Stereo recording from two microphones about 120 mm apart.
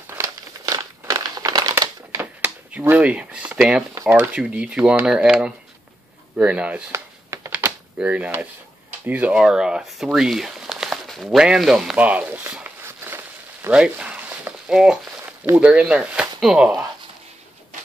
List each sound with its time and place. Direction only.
0.0 s crumpling: 20° right (ahead or behind)
2.7 s speech: 15° right (ahead or behind)
3.9 s speech: 20° right (ahead or behind)
6.9 s a sound: 20° right (ahead or behind); by 15.0 s 5° right (ahead or behind)
15.5 s speech: 10° right (ahead or behind)